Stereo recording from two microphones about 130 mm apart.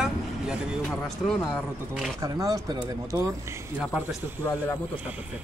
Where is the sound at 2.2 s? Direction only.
25° right (ahead or behind).